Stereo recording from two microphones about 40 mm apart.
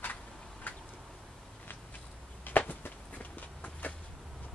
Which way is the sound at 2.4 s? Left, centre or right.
Left.